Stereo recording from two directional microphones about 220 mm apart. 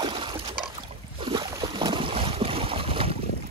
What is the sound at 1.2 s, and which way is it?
Boat, 20° right (ahead or behind).